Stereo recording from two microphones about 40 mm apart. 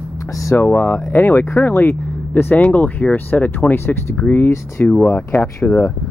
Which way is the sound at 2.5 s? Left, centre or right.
Left.